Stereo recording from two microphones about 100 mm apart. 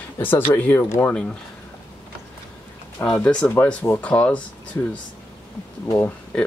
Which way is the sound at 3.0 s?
10° left (ahead or behind).